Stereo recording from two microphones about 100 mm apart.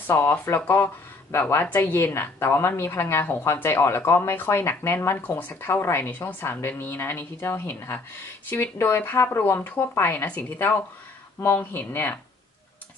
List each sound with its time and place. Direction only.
0.0 s a woman's voice: 20° left (ahead or behind)